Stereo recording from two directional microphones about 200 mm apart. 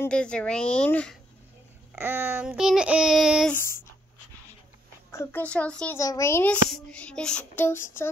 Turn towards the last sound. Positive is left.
turn(degrees=10)  # may be behind; listen again after turning